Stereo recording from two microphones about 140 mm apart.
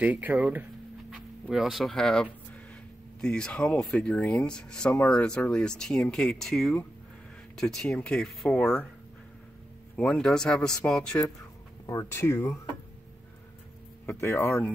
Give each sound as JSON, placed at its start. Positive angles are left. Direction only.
{"t": 0.0, "sound": "speech", "side_deg": -10}
{"t": 9.9, "sound": "speech", "side_deg": 5}
{"t": 11.8, "sound": "speech", "side_deg": 20}
{"t": 14.2, "sound": "speech", "side_deg": 20}